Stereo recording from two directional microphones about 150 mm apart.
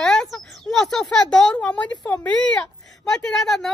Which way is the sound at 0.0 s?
5° left (ahead or behind).